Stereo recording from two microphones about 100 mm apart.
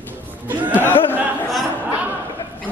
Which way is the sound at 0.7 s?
20° left (ahead or behind).